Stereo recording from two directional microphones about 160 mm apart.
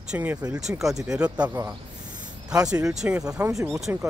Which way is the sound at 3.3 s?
20° right (ahead or behind).